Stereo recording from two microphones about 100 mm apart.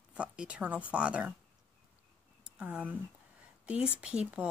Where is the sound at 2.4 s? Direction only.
15° right (ahead or behind).